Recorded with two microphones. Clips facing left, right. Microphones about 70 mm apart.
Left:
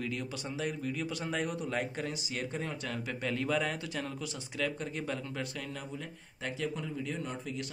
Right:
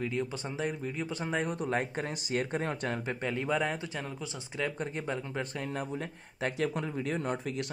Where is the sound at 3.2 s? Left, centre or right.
Right.